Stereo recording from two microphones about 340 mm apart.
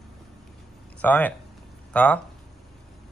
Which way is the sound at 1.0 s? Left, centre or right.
Centre.